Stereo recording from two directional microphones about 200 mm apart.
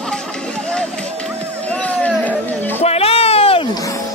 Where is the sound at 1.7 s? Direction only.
5° left (ahead or behind).